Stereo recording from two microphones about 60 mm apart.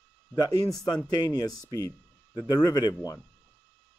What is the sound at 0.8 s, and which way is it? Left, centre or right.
Speech, left.